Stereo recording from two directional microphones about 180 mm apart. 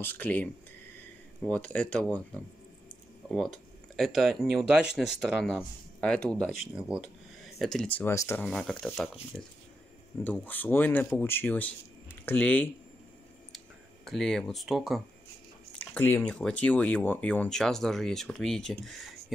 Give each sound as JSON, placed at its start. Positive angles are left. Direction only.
{"t": 0.0, "sound": "speech", "side_deg": 10}
{"t": 3.3, "sound": "speech", "side_deg": 0}
{"t": 8.5, "sound": "speech", "side_deg": 0}
{"t": 10.2, "sound": "speech", "side_deg": 10}
{"t": 14.0, "sound": "speech", "side_deg": 0}